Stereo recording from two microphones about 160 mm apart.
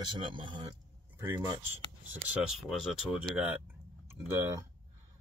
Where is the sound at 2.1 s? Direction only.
5° right (ahead or behind).